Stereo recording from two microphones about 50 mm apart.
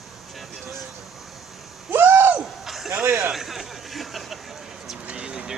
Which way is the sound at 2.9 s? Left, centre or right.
Right.